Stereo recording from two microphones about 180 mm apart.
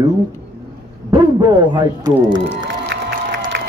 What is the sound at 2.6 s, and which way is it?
Crowd, 80° right.